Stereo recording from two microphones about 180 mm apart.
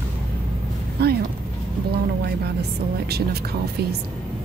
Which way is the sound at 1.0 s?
65° right (ahead or behind).